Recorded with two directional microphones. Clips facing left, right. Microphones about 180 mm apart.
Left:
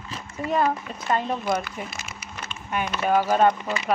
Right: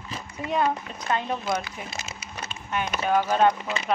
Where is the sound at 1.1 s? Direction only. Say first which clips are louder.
Left 2 dB; 5° left (ahead or behind).